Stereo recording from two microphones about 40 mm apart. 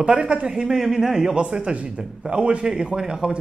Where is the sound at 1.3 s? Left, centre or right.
Right.